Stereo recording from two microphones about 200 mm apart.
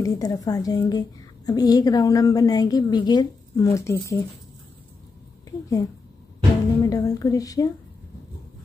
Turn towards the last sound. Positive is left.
turn(degrees=15)  # may be behind; listen again after turning